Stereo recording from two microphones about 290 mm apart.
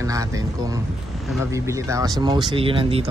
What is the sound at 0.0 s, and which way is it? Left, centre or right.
A man's voice, centre.